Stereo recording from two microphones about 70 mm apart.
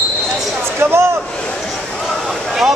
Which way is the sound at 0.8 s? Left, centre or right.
Right.